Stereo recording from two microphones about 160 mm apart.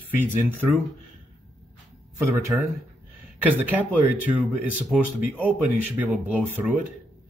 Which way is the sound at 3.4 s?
10° right (ahead or behind).